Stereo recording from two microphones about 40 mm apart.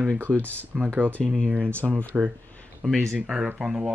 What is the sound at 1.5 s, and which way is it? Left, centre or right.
Speech, right.